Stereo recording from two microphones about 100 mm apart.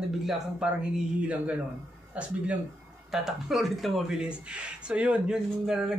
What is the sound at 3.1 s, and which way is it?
Speech, 5° right (ahead or behind).